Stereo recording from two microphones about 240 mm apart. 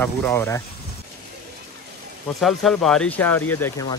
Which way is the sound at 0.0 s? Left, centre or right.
Centre.